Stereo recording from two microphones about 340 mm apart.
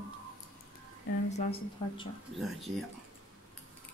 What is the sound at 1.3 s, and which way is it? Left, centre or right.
Speech, centre.